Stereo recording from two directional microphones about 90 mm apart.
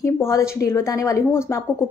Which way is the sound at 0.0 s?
30° left (ahead or behind).